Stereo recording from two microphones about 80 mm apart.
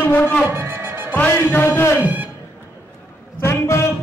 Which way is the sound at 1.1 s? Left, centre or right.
Left.